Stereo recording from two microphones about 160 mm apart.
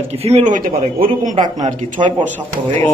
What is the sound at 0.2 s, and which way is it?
Speech, 40° right (ahead or behind).